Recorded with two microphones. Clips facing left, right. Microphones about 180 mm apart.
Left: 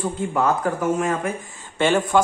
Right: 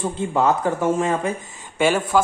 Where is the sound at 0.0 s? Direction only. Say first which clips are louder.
Right 2 dB; 20° right (ahead or behind).